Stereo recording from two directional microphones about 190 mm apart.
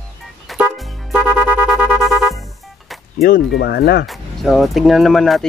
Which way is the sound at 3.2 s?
55° left (ahead or behind).